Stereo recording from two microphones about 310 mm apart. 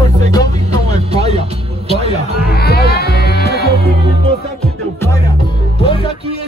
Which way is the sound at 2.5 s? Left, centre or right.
Left.